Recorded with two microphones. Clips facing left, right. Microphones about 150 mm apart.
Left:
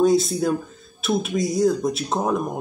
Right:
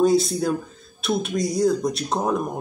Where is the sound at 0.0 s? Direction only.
Centre (ahead or behind).